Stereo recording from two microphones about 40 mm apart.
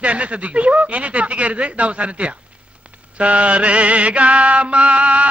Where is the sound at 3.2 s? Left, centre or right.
Right.